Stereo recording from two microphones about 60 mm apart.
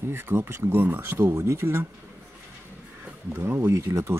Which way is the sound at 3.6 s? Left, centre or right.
Right.